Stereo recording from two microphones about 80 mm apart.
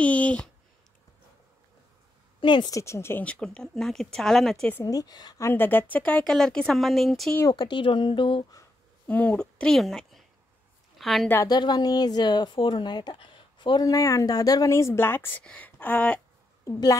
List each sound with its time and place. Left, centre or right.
0.0 s a sound: centre
2.4 s a woman's voice: left
2.7 s speech: left
3.3 s speech: centre
4.8 s a woman's voice: left
5.5 s speech: left
6.2 s speech: centre
7.5 s speech: left
9.0 s a woman's voice: centre
11.4 s a woman's voice: left
13.8 s a woman's voice: left
14.7 s speech: left